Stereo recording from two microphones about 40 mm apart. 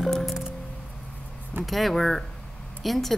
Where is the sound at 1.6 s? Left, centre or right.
Centre.